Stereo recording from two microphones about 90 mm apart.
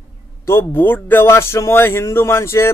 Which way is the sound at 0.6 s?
20° left (ahead or behind).